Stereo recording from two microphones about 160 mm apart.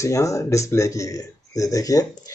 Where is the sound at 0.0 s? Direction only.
20° left (ahead or behind).